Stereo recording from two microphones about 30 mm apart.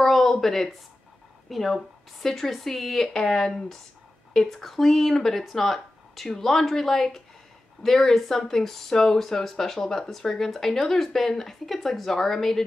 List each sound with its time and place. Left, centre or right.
0.0 s a sound: centre
1.5 s speech: centre
3.1 s speech: centre
4.5 s speech: centre